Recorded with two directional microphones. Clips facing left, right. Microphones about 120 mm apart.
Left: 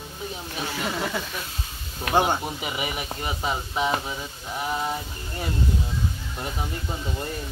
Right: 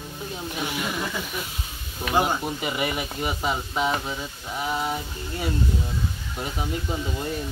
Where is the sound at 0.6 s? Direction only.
15° right (ahead or behind).